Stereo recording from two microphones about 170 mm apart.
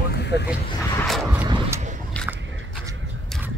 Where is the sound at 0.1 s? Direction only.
90° left.